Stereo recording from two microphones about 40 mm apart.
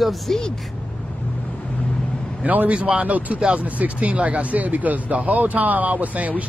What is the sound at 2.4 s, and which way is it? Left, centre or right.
Speech, right.